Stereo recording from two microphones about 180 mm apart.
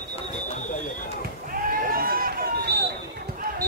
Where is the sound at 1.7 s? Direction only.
55° right (ahead or behind).